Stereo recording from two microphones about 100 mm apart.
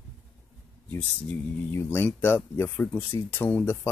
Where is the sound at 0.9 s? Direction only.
20° left (ahead or behind).